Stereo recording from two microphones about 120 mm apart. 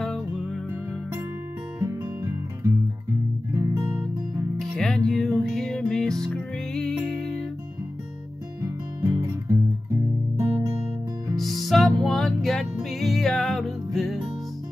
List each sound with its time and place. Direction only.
0.0 s music: 5° left (ahead or behind)
1.8 s music: 30° right (ahead or behind)
4.6 s music: 5° left (ahead or behind)
8.6 s music: 25° right (ahead or behind)
11.3 s music: centre (ahead or behind)